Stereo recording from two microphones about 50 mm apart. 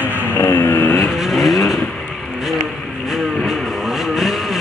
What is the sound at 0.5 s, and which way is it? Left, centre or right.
Vehicle, left.